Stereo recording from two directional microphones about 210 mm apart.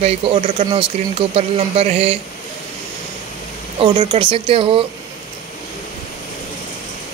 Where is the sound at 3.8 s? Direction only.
20° right (ahead or behind).